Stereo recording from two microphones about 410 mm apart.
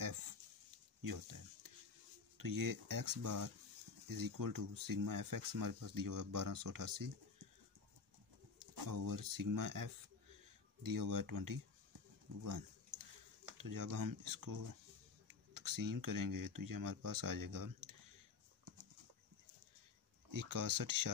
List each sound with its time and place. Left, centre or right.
1.0 s a sound: right
2.3 s speech: right
8.7 s speech: right
12.4 s a sound: right
13.6 s speech: right
20.2 s speech: right